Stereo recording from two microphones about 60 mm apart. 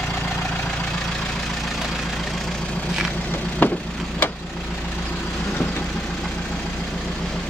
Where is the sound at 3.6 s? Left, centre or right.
Left.